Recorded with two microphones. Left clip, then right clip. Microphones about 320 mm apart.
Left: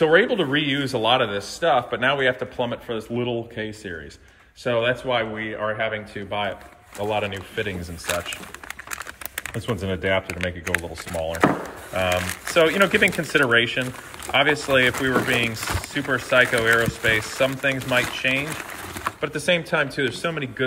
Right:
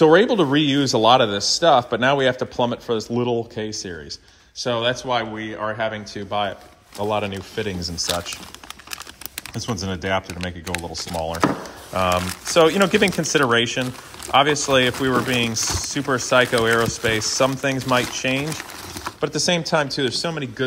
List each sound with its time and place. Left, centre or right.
0.0 s speech: centre
9.5 s speech: centre